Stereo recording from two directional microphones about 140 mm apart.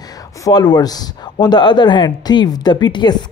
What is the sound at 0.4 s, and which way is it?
Speech, 30° left (ahead or behind).